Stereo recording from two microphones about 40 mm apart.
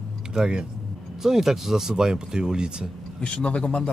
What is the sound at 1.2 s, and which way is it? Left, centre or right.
Speech, centre.